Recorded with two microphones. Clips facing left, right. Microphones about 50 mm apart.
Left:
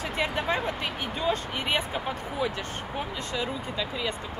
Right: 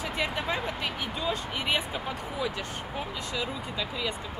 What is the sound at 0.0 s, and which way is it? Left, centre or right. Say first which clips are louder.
Speech: left 2 dB; left.